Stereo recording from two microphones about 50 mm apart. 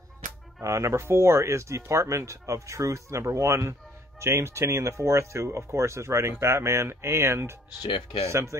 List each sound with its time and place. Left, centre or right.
0.7 s speech: right
4.2 s speech: right